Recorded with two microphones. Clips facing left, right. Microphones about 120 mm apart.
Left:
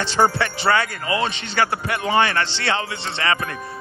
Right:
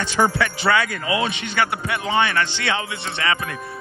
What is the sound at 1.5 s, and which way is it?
Speech, 30° left (ahead or behind).